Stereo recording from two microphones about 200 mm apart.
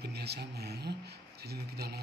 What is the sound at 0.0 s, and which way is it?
Speech, 55° right (ahead or behind).